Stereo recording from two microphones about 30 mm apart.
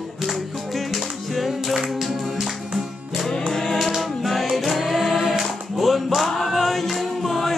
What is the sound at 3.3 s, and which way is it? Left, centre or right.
Music, centre.